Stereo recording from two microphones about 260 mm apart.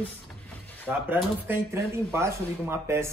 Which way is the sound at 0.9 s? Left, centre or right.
Centre.